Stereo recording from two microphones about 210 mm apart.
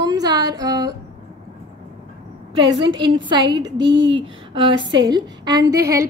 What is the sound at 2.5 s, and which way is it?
A woman's voice, 25° right (ahead or behind).